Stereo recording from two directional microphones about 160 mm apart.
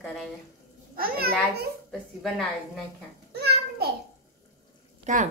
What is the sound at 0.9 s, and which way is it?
Speech, 70° right (ahead or behind).